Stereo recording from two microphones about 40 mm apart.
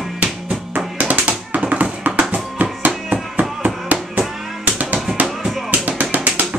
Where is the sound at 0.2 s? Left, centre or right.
Right.